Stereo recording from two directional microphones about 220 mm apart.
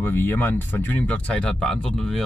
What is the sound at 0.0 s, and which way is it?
Speech, 10° left (ahead or behind).